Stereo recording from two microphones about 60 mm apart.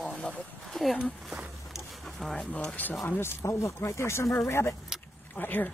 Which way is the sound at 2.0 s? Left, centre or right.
Centre.